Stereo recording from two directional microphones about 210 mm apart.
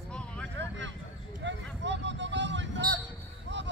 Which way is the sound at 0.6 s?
60° right (ahead or behind).